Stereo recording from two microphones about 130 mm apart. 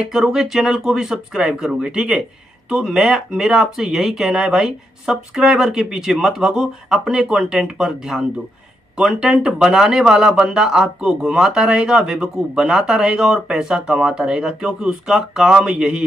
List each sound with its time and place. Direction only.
0.0 s speech: 5° right (ahead or behind)